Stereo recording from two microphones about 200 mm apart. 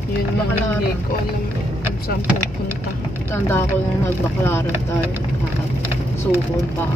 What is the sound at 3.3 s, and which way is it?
Speech, 15° left (ahead or behind).